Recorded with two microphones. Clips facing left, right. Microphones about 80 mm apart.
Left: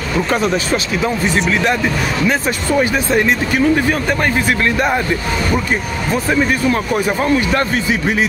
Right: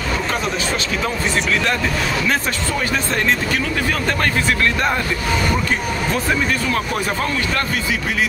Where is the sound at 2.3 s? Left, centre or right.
Centre.